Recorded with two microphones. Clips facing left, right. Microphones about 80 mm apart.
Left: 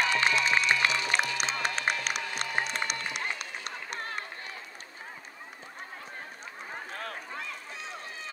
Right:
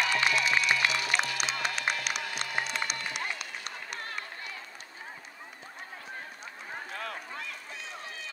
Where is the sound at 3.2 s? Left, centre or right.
Left.